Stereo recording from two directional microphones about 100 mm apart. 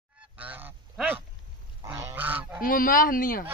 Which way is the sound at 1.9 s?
30° right (ahead or behind).